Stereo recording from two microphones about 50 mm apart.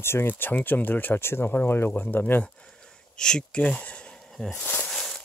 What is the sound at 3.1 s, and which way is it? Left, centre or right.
Speech, centre.